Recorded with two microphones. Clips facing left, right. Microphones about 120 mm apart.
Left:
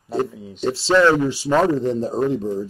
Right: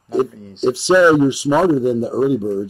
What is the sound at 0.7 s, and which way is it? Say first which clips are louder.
Speech: right 4 dB; 15° right (ahead or behind).